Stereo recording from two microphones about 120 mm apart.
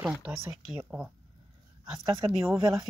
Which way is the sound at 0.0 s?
10° right (ahead or behind).